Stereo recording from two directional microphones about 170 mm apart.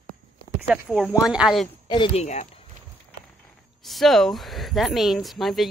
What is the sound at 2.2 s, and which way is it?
Speech, 40° left (ahead or behind).